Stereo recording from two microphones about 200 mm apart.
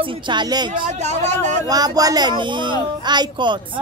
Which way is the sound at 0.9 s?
35° right (ahead or behind).